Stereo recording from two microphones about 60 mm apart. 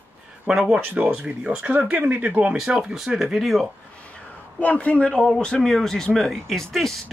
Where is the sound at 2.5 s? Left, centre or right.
Centre.